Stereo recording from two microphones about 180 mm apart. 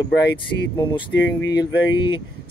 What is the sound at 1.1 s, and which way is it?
Speech, 85° left.